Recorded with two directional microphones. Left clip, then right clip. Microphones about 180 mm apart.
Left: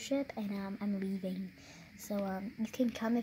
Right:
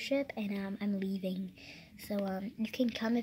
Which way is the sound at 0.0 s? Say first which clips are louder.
Right 2 dB; 5° right (ahead or behind).